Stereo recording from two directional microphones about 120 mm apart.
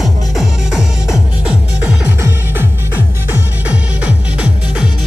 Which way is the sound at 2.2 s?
20° right (ahead or behind).